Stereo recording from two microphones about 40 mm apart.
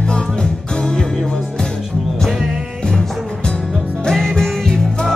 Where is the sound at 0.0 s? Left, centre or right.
Left.